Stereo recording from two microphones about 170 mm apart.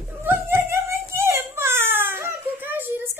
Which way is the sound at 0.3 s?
10° right (ahead or behind).